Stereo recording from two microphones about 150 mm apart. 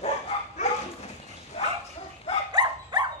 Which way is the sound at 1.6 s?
40° left (ahead or behind).